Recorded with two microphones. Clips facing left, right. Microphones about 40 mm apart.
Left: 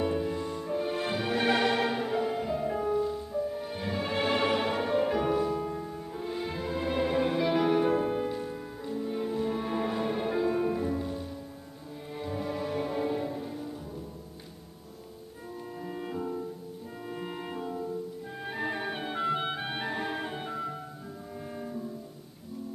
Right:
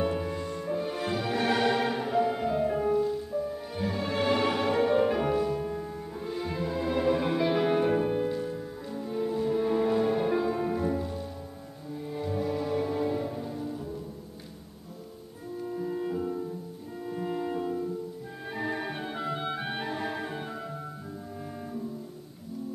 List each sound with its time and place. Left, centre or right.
0.0 s music: centre
3.7 s music: centre
15.7 s music: centre
18.4 s music: centre
19.6 s music: centre